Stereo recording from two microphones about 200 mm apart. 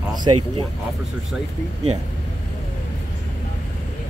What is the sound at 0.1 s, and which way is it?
Speech, 20° right (ahead or behind).